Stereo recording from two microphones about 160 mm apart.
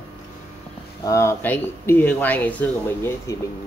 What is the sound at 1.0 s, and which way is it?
Speech, 20° left (ahead or behind).